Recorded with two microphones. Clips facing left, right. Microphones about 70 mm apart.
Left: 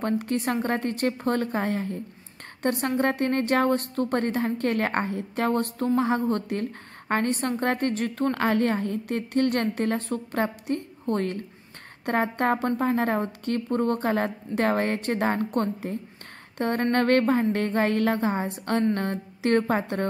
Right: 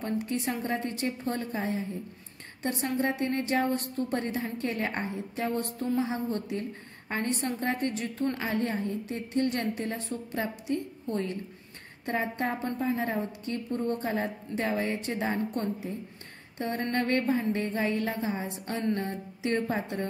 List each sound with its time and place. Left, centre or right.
0.0 s a woman's voice: left
16.5 s a sound: left
16.9 s a woman's voice: left